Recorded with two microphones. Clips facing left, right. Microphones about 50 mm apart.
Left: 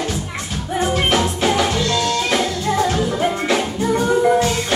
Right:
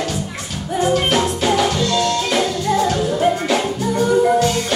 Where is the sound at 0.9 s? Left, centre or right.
Left.